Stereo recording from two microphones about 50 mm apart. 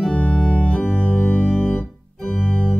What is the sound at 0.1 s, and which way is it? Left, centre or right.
Organ, left.